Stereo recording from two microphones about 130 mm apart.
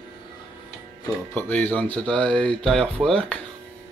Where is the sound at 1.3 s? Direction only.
15° left (ahead or behind).